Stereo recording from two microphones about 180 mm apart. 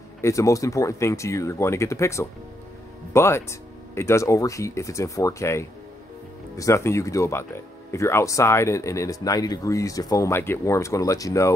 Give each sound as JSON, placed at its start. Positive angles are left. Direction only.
{"t": 0.2, "sound": "speech", "side_deg": 15}